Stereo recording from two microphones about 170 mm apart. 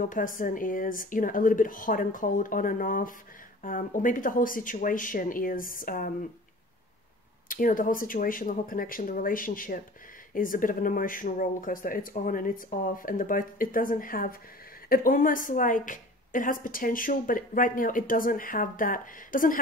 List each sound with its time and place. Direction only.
0.0 s a woman's voice: 50° left (ahead or behind)
7.4 s a woman's voice: 55° left (ahead or behind)